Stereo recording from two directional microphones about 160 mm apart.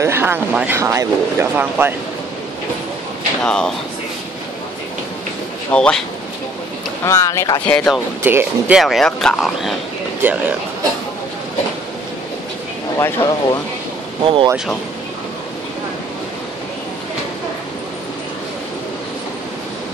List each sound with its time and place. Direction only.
0.0 s speech: 15° right (ahead or behind)
3.4 s speech: 5° left (ahead or behind)
5.7 s speech: 5° left (ahead or behind)
7.1 s speech: 20° left (ahead or behind)
7.6 s speech: 10° left (ahead or behind)
8.2 s speech: 15° right (ahead or behind)
8.7 s speech: centre (ahead or behind)
10.2 s speech: 10° right (ahead or behind)
12.9 s speech: 20° left (ahead or behind)
14.2 s speech: 30° right (ahead or behind)